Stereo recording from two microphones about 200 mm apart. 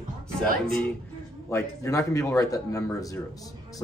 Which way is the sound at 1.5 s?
15° left (ahead or behind).